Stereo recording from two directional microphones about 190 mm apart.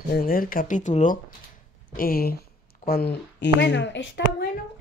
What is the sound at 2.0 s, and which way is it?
Speech, 50° left (ahead or behind).